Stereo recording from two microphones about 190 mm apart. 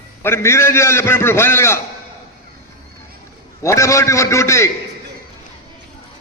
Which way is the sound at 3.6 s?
15° left (ahead or behind).